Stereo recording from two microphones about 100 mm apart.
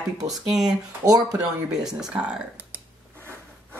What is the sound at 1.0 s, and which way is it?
Speech, 35° right (ahead or behind).